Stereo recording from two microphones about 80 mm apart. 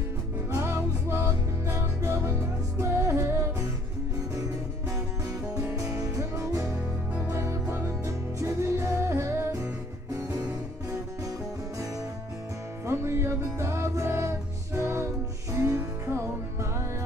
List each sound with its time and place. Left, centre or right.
0.5 s music: right
5.8 s music: right
12.8 s music: right